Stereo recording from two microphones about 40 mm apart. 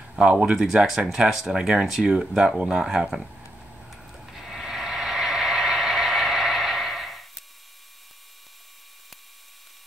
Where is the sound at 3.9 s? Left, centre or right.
Centre.